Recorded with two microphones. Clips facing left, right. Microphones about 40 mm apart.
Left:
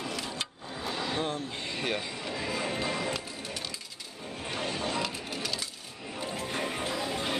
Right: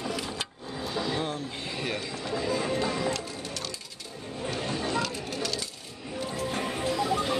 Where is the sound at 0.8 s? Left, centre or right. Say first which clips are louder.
Right 2 dB; centre.